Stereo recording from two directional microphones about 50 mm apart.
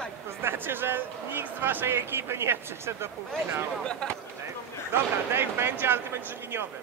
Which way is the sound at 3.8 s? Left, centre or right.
Left.